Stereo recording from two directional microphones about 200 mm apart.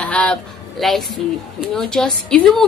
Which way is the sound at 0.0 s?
5° left (ahead or behind).